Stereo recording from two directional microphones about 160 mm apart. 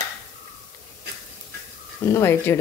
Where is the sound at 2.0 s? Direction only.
15° left (ahead or behind).